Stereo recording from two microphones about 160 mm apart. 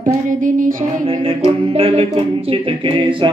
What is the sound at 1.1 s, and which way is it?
Music, 35° right (ahead or behind).